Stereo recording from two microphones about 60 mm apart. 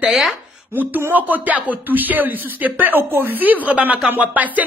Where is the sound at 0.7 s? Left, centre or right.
Right.